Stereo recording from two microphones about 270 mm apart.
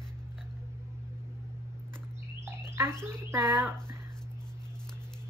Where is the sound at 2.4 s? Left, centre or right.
Centre.